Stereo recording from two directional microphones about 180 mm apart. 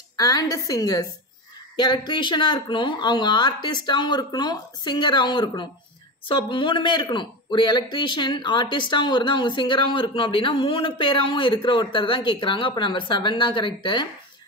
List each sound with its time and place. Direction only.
0.2 s a man's voice: 20° left (ahead or behind)